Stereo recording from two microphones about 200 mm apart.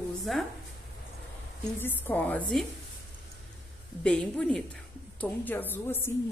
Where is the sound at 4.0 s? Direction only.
5° left (ahead or behind).